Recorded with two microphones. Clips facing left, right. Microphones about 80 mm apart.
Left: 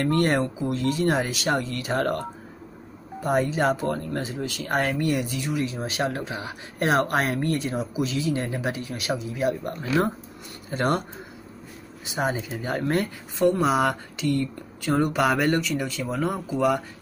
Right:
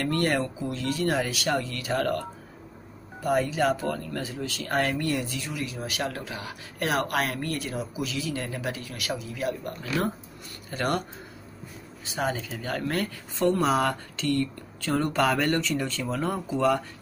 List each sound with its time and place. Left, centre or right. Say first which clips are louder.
0.0 s speech: left 4 dB; left
12.2 s speech: left 3 dB; centre
13.4 s speech: left 2 dB; centre